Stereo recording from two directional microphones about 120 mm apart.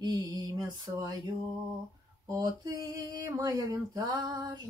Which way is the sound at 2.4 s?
30° right (ahead or behind).